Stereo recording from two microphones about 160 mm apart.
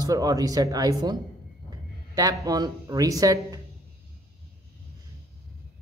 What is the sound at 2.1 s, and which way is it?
Speech, 20° right (ahead or behind).